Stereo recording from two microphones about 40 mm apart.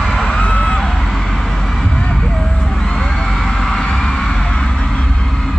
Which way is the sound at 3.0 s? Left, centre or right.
Centre.